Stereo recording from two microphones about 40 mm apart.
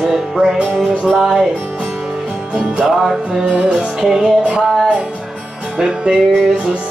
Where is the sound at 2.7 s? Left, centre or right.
Centre.